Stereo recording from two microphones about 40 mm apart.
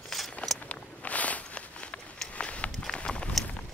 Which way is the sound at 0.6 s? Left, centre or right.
Left.